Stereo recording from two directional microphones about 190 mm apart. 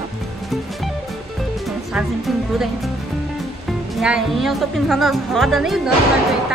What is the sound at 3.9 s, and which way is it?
A woman's voice, centre (ahead or behind).